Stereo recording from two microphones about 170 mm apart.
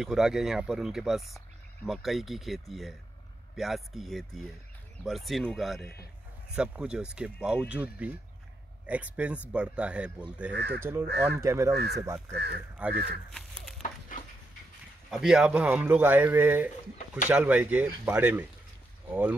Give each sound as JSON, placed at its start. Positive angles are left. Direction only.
{"t": 0.0, "sound": "a man's voice", "side_deg": -5}
{"t": 10.5, "sound": "speech", "side_deg": -80}
{"t": 10.8, "sound": "a man's voice", "side_deg": -15}
{"t": 11.7, "sound": "speech", "side_deg": -75}
{"t": 13.3, "sound": "a sound", "side_deg": 0}
{"t": 15.0, "sound": "a man's voice", "side_deg": 0}